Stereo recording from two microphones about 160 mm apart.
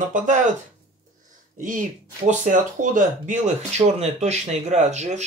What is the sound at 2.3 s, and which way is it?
Speech, 50° right (ahead or behind).